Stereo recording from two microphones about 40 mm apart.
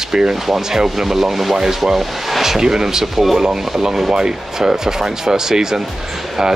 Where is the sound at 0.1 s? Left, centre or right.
Centre.